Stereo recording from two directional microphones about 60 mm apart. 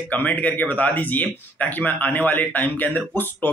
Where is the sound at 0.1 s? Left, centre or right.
Left.